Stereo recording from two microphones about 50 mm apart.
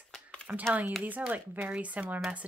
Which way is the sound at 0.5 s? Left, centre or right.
Right.